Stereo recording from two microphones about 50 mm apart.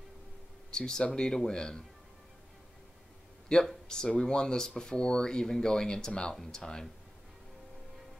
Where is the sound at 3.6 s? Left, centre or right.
Centre.